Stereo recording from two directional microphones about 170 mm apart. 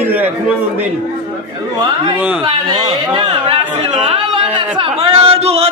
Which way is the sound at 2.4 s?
30° right (ahead or behind).